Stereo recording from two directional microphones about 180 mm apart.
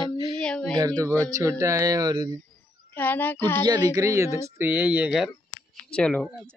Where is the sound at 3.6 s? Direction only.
20° right (ahead or behind); by 6.5 s 5° left (ahead or behind).